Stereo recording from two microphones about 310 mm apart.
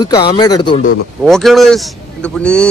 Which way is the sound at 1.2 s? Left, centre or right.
Centre.